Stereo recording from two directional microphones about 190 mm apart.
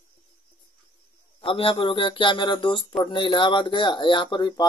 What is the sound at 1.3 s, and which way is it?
Speech, 30° left (ahead or behind).